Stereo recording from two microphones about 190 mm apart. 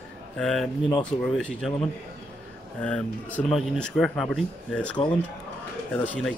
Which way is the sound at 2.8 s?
5° left (ahead or behind).